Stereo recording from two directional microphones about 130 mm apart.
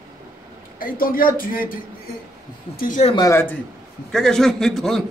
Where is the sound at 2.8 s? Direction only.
85° left.